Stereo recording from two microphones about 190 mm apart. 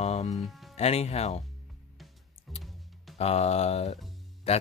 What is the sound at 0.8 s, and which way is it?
Speech, 35° left (ahead or behind).